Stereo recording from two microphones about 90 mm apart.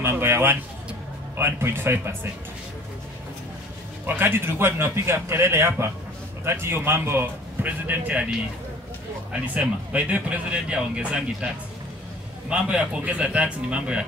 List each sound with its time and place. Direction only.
0.0 s a sound: 25° right (ahead or behind)
1.4 s a man's voice: 25° right (ahead or behind)
4.0 s a man's voice: 25° right (ahead or behind)
9.5 s speech: 15° right (ahead or behind)